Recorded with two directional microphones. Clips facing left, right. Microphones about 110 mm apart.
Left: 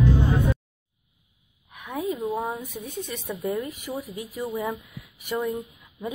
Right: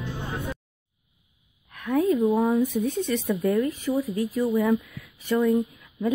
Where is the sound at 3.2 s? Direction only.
15° left (ahead or behind).